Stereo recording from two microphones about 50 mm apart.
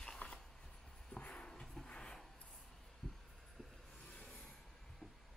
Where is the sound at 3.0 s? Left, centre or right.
Centre.